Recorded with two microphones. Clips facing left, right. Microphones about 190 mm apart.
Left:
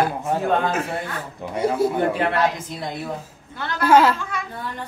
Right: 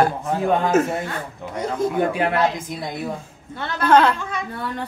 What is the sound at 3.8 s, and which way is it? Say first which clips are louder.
Speech: even; 5° left (ahead or behind).